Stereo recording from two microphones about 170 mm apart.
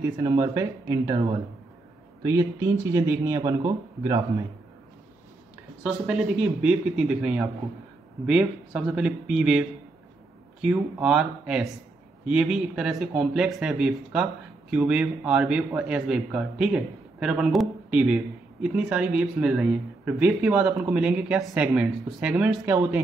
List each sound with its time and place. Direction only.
0.0 s a man's voice: 20° right (ahead or behind)
2.9 s a man's voice: 20° right (ahead or behind)
5.9 s speech: 5° right (ahead or behind)